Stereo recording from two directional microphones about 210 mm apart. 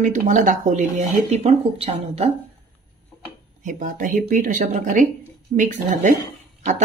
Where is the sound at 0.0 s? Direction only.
35° right (ahead or behind).